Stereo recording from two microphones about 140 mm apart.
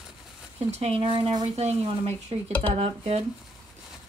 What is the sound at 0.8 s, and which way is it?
Speech, 45° right (ahead or behind).